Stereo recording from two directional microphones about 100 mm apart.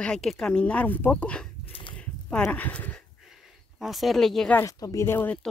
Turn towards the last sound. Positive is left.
turn(degrees=20)  # may be behind; listen again after turning